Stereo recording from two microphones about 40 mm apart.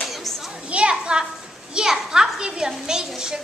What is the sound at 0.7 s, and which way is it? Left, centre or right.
A child's voice, right.